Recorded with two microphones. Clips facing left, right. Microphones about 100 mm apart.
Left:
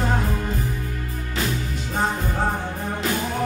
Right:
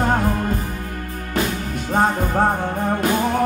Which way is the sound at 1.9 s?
45° right (ahead or behind).